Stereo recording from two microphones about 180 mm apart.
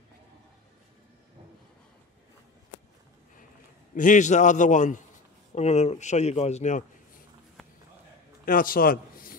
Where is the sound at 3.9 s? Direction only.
45° left (ahead or behind).